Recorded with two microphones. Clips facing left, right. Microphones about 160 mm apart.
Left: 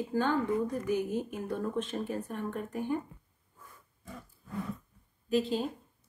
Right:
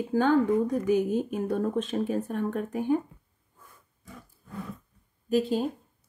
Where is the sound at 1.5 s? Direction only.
65° right (ahead or behind).